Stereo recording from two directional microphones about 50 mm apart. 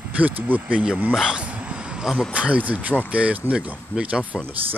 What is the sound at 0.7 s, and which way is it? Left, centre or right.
Speech, right.